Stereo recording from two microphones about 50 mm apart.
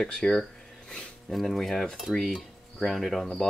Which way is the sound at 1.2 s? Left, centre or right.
Centre.